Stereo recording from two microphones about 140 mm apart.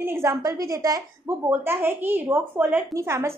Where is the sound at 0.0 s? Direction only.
20° right (ahead or behind).